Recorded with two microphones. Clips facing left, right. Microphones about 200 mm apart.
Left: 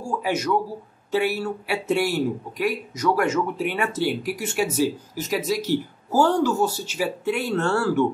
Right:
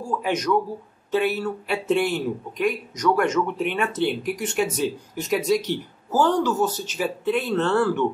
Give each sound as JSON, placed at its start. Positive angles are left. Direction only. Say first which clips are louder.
{"t": 0.0, "sound": "speech", "louder": "even", "side_deg": 5}